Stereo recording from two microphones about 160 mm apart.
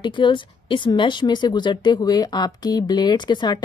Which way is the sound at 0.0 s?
30° left (ahead or behind).